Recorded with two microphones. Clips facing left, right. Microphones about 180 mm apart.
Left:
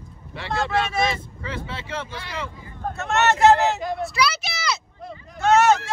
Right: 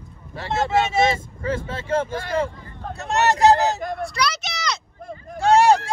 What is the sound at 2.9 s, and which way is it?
Speech, 35° right (ahead or behind).